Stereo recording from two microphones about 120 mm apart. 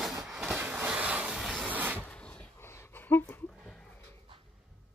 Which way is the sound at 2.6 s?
20° left (ahead or behind).